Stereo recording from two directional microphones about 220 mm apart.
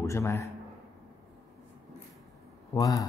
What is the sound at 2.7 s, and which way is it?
Speech, 15° left (ahead or behind).